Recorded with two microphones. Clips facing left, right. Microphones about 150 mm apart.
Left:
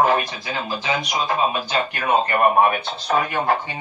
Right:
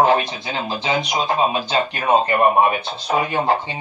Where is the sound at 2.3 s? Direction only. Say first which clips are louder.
Right 1 dB; 20° right (ahead or behind).